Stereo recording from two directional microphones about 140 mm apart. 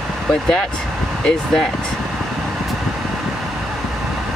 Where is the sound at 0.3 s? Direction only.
5° left (ahead or behind).